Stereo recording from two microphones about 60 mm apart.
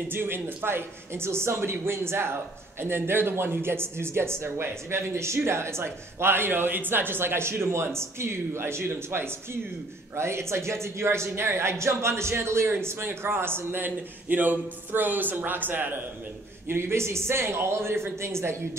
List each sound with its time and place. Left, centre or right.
0.1 s speech: right
16.6 s speech: right